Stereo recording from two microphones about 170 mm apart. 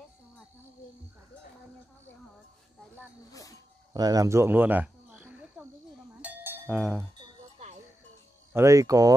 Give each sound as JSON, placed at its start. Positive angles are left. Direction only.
{"t": 3.3, "sound": "speech", "side_deg": 20}
{"t": 3.9, "sound": "a sound", "side_deg": -20}
{"t": 6.2, "sound": "cowbell", "side_deg": -10}
{"t": 8.5, "sound": "speech", "side_deg": -20}